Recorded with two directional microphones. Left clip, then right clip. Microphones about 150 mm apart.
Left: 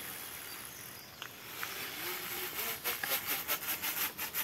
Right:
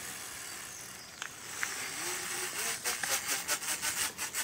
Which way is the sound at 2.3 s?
30° right (ahead or behind).